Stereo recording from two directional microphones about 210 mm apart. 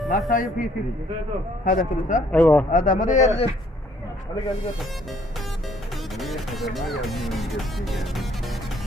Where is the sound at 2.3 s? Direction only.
5° left (ahead or behind).